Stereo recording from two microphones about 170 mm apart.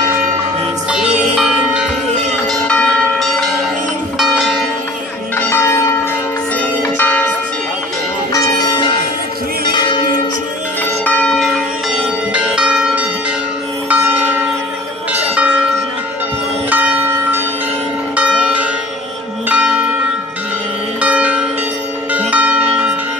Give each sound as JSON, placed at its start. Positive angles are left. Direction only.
{"t": 0.8, "sound": "music", "side_deg": -5}
{"t": 2.6, "sound": "church bell", "side_deg": 5}
{"t": 5.5, "sound": "church bell", "side_deg": 15}
{"t": 6.8, "sound": "bell", "side_deg": 10}
{"t": 8.3, "sound": "church bell", "side_deg": 20}
{"t": 11.1, "sound": "music", "side_deg": 5}
{"t": 12.4, "sound": "church bell", "side_deg": -5}
{"t": 15.3, "sound": "music", "side_deg": -5}
{"t": 16.7, "sound": "church bell", "side_deg": -10}
{"t": 21.0, "sound": "church bell", "side_deg": -10}
{"t": 22.1, "sound": "music", "side_deg": -10}